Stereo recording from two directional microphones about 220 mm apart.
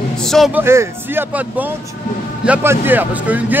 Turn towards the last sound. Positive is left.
turn(degrees=-10)  # may be behind; listen again after turning